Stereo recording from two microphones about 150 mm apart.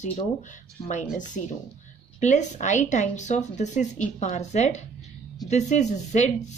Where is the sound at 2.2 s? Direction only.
50° left (ahead or behind).